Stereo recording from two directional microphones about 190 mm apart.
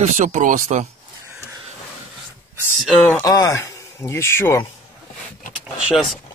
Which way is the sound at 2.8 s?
5° left (ahead or behind).